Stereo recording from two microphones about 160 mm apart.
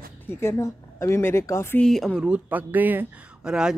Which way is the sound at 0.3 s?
15° left (ahead or behind).